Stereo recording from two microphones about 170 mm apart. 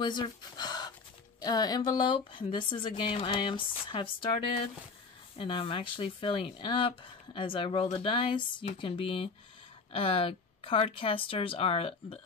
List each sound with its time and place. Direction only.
0.0 s speech: 25° left (ahead or behind)